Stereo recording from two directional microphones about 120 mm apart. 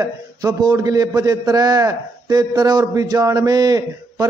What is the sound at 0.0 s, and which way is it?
A man's voice, 30° right (ahead or behind).